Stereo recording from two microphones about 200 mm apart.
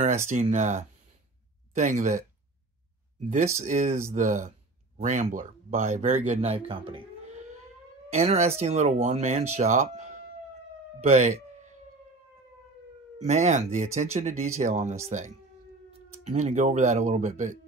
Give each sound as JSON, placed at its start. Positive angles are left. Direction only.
{"t": 0.3, "sound": "speech", "side_deg": -35}
{"t": 3.6, "sound": "speech", "side_deg": -40}
{"t": 6.9, "sound": "a sound", "side_deg": -35}
{"t": 8.1, "sound": "speech", "side_deg": -30}
{"t": 13.2, "sound": "speech", "side_deg": -35}